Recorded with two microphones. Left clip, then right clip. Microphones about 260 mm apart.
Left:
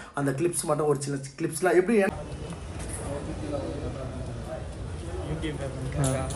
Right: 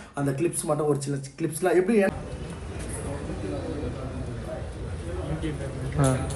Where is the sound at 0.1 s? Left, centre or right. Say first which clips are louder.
Even; centre.